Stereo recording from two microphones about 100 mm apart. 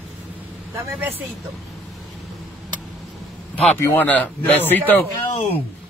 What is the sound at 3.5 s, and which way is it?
A man's voice, 15° left (ahead or behind).